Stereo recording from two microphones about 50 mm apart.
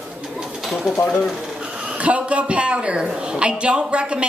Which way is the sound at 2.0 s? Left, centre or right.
Right.